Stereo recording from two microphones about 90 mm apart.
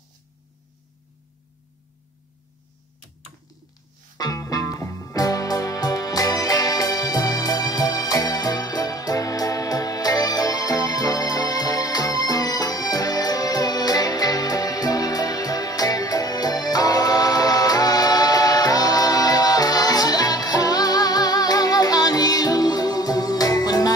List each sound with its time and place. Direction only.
4.2 s music: 45° left (ahead or behind)